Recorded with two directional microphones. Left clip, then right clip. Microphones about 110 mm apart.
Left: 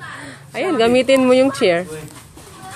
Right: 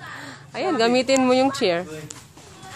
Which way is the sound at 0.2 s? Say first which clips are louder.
Left 4 dB; 10° left (ahead or behind).